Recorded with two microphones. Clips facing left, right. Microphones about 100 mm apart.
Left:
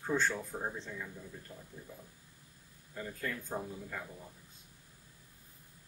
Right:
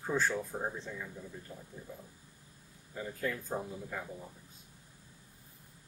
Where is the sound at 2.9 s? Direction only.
10° right (ahead or behind).